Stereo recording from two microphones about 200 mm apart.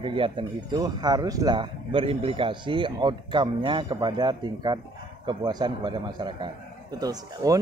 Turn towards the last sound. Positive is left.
turn(degrees=-20)  # may be behind; listen again after turning